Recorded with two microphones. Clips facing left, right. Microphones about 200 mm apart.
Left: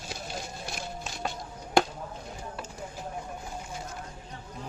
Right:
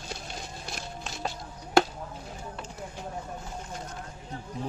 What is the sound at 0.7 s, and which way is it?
Music, centre (ahead or behind).